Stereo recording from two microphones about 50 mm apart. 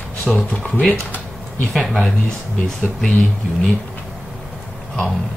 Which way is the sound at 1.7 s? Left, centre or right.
Centre.